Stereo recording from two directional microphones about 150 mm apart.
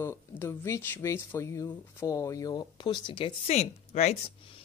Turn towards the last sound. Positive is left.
turn(degrees=50)  # may be behind; listen again after turning